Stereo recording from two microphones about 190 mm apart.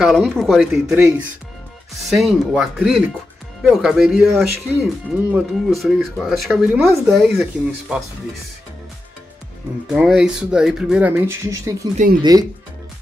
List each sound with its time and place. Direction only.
0.0 s speech: centre (ahead or behind)
9.8 s speech: 5° right (ahead or behind); by 12.4 s 20° right (ahead or behind)